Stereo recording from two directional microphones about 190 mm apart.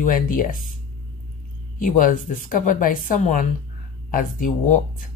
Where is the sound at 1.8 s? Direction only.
45° left (ahead or behind).